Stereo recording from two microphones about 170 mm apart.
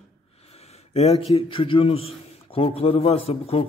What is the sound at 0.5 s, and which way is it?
A man's voice, 35° left (ahead or behind).